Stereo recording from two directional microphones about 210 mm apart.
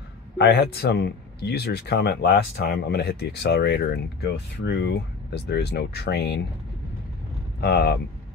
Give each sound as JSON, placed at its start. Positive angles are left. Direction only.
{"t": 0.4, "sound": "speech", "side_deg": 50}
{"t": 7.6, "sound": "speech", "side_deg": 50}